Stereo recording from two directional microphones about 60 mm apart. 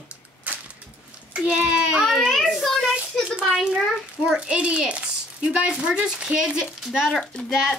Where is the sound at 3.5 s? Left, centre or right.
Centre.